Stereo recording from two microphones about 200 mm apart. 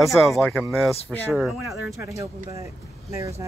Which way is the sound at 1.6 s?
15° right (ahead or behind).